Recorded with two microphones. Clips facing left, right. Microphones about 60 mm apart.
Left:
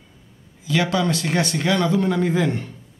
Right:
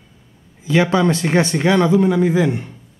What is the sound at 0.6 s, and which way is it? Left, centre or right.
Speech, right.